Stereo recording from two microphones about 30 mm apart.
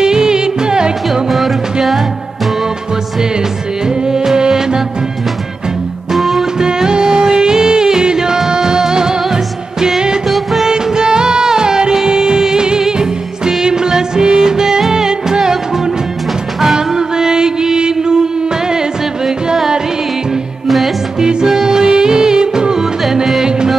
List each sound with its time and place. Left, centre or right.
0.0 s music: right
4.0 s music: centre
6.1 s music: centre
6.6 s music: right
10.2 s music: centre
10.7 s music: right
19.2 s music: centre
21.2 s music: right